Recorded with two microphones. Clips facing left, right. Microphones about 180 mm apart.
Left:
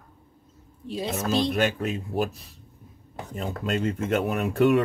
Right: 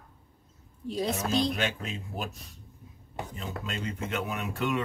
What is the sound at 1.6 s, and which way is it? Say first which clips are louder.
Speech: left 8 dB; 45° left (ahead or behind).